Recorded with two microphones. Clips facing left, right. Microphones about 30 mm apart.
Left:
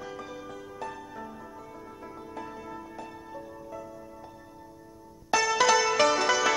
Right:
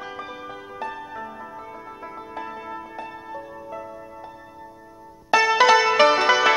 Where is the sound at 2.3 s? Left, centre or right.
Right.